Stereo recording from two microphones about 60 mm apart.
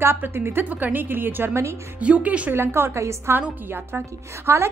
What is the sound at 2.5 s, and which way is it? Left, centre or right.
Speech, right.